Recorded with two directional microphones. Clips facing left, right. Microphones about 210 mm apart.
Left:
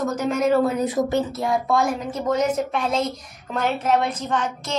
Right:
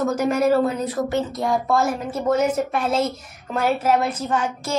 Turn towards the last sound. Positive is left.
turn(degrees=-5)  # may be behind; listen again after turning